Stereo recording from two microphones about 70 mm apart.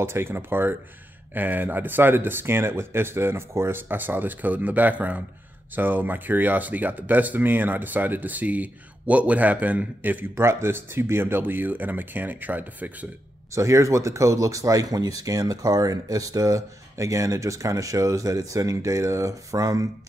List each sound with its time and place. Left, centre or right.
0.0 s speech: right
10.3 s speech: right
13.6 s speech: right